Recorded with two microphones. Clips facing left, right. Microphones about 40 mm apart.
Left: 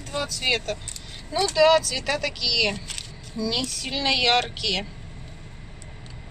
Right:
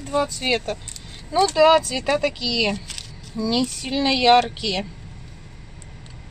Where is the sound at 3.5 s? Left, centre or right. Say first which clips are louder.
Right 9 dB; left.